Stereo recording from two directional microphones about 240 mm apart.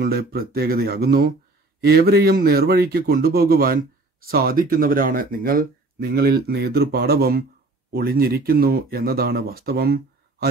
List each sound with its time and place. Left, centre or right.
0.0 s speech: right